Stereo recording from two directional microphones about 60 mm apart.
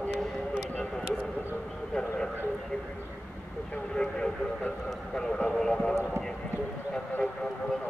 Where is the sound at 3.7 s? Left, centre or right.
Centre.